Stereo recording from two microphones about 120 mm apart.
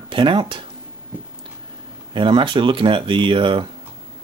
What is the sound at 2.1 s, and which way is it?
Speech, 45° right (ahead or behind).